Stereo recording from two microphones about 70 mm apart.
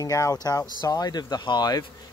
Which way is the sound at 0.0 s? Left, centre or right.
Left.